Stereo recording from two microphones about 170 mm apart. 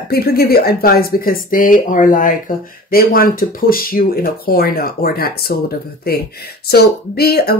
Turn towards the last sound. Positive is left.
turn(degrees=65)  # may be behind; listen again after turning